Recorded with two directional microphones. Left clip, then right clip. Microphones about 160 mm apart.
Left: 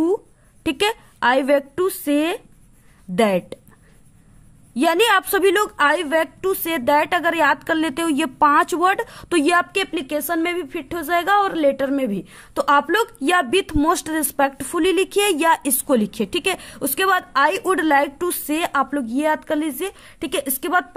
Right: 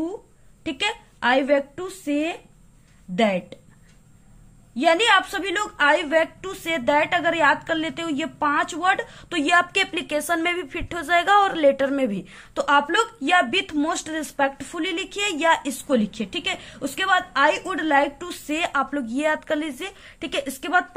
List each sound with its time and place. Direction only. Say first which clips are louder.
0.7 s a woman's voice: left 5 dB; 55° left (ahead or behind)
3.2 s a woman's voice: left 3 dB; 55° left (ahead or behind)
4.7 s a woman's voice: left 1 dB; 55° left (ahead or behind)
9.7 s speech: even; 30° left (ahead or behind)